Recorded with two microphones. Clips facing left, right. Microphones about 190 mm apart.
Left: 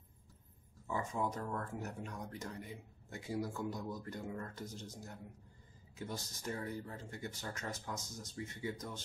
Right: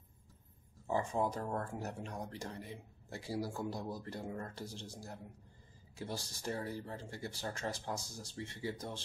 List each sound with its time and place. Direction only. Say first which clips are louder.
0.8 s speech: right 4 dB; 30° right (ahead or behind)